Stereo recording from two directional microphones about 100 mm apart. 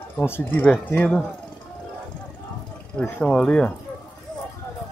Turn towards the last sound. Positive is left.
turn(degrees=10)  # may be behind; listen again after turning